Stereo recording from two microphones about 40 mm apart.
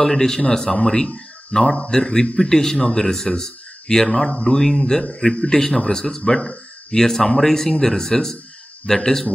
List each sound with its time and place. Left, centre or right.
0.0 s speech: centre
5.3 s a man's voice: left